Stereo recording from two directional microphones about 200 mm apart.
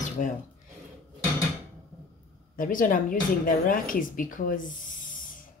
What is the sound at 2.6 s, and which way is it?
Speech, 45° left (ahead or behind).